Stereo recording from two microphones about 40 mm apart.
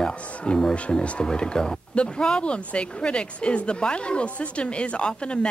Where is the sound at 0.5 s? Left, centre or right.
Left.